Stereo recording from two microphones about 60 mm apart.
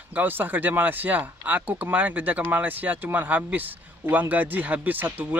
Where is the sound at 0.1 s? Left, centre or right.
Right.